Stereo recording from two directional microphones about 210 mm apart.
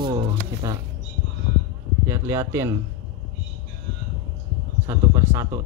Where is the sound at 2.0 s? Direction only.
10° right (ahead or behind).